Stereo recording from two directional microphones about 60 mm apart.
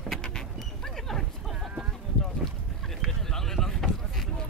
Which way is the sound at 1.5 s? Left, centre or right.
Centre.